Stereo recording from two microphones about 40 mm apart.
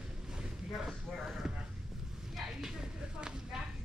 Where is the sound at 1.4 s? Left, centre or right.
Centre.